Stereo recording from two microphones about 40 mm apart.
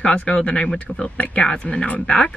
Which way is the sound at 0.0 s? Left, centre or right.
Left.